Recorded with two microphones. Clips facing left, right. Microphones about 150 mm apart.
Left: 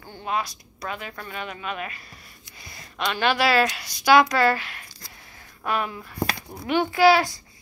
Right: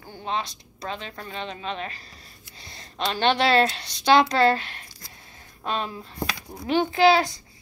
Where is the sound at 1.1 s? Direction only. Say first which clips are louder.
Even; 25° right (ahead or behind).